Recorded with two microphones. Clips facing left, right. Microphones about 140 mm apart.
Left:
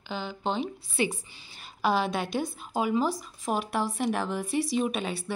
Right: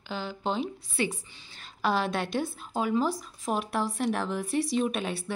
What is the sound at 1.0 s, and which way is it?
Speech, 15° left (ahead or behind).